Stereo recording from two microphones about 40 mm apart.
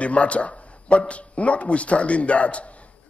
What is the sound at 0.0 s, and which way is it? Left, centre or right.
A man's voice, left.